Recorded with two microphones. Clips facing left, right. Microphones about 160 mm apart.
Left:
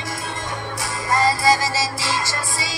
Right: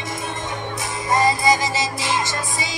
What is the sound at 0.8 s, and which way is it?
Music, 20° right (ahead or behind).